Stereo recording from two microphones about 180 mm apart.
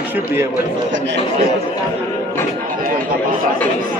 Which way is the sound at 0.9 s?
80° right.